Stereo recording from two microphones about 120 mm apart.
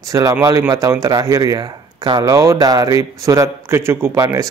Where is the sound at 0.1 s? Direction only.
30° right (ahead or behind).